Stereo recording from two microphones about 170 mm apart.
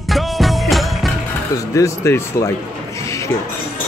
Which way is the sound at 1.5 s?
20° left (ahead or behind).